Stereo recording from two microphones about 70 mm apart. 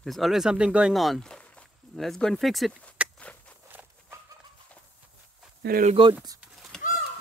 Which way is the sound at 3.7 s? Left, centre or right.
Right.